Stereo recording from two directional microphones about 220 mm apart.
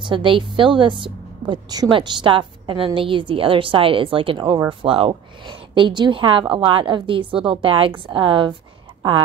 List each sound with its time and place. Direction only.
0.0 s a woman's voice: 20° right (ahead or behind)